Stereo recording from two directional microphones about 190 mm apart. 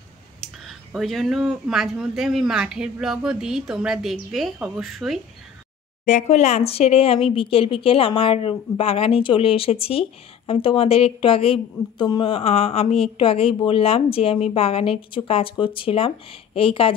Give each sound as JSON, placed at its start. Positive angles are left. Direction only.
{"t": 0.4, "sound": "speech", "side_deg": 0}
{"t": 6.0, "sound": "speech", "side_deg": 40}